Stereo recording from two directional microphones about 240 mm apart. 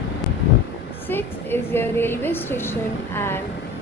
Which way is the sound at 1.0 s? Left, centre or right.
Centre.